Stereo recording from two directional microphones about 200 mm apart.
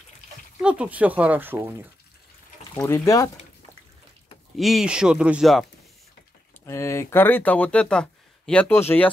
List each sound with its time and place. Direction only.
0.6 s speech: 5° right (ahead or behind)
2.7 s speech: 15° left (ahead or behind)
4.6 s speech: centre (ahead or behind)
6.6 s speech: 15° left (ahead or behind)